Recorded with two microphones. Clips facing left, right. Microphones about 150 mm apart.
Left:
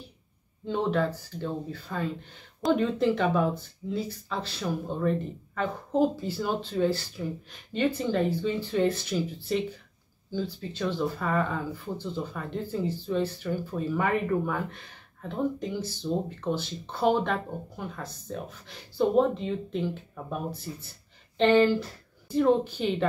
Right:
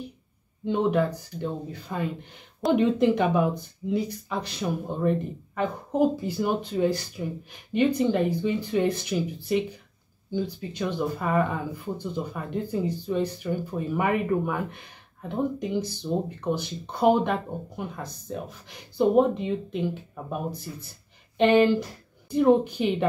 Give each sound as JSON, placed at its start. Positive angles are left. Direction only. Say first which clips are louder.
{"t": 0.7, "sound": "speech", "louder": "right 3 dB", "side_deg": -15}